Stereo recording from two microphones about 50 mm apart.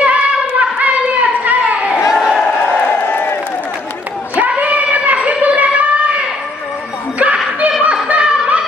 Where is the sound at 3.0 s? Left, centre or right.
Left.